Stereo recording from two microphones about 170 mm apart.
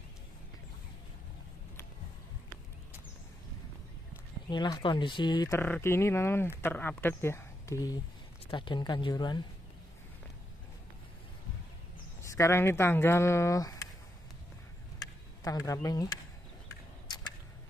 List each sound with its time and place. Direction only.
4.5 s speech: 25° left (ahead or behind)
5.6 s speech: 15° left (ahead or behind)
12.2 s speech: 15° left (ahead or behind)
15.0 s a sound: 20° left (ahead or behind)